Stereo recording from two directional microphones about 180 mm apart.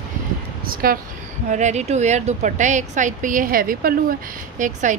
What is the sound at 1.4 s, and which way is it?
A woman's voice, 40° right (ahead or behind).